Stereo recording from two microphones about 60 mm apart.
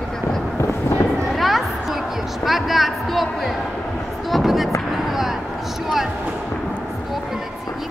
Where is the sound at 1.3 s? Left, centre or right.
Centre.